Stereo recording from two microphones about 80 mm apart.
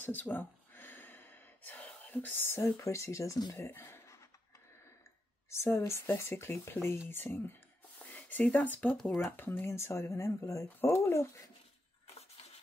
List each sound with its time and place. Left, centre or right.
0.0 s gasp: left
3.5 s speech: left
5.5 s speech: left